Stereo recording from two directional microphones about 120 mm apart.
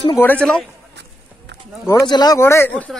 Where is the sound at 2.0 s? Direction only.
35° left (ahead or behind).